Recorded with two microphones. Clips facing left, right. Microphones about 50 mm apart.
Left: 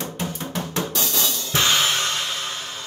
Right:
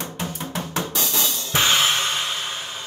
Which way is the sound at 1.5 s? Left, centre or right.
Centre.